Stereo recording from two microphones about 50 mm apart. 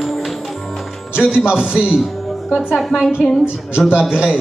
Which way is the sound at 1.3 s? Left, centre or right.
Centre.